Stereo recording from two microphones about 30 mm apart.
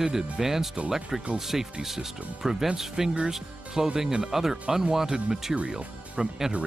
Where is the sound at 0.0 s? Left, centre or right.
Centre.